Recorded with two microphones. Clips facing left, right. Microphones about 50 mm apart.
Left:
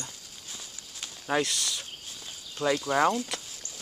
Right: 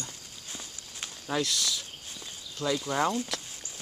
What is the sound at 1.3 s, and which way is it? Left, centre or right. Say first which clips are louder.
Speech: left 2 dB; left.